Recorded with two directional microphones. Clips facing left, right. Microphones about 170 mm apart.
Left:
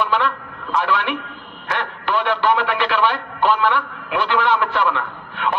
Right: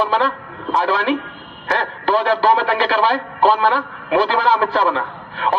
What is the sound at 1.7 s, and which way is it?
A man's voice, 35° right (ahead or behind).